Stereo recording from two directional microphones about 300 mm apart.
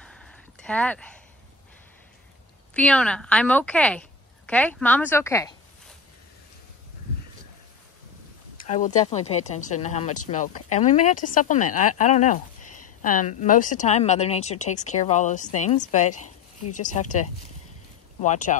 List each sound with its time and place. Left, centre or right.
0.0 s a sound: centre
2.7 s a woman's voice: centre
8.6 s speech: left
16.6 s speech: left
16.9 s speech: left